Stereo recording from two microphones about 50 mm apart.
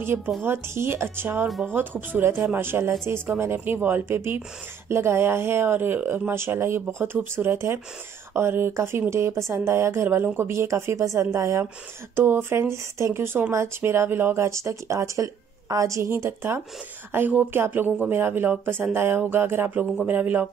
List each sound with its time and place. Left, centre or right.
0.4 s speech: right
3.8 s speech: right
4.8 s speech: right
5.7 s speech: right
10.0 s speech: right
10.3 s speech: right
12.2 s speech: right
14.3 s a woman's voice: right